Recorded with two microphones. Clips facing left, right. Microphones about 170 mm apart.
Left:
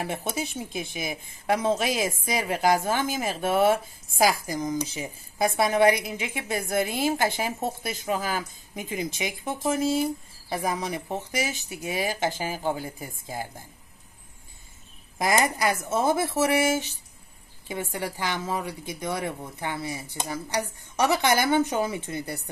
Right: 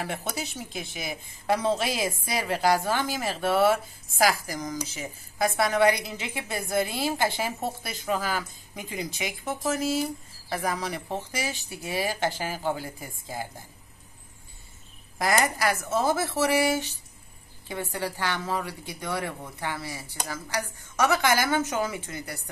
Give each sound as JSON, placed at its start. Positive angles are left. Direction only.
{"t": 0.0, "sound": "a woman's voice", "side_deg": 15}
{"t": 15.1, "sound": "a woman's voice", "side_deg": 20}